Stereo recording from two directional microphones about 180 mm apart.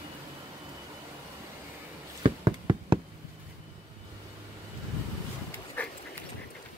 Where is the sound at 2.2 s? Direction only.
30° right (ahead or behind).